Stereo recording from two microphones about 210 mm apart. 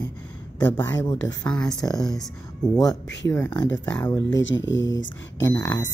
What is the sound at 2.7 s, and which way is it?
Speech, 15° left (ahead or behind).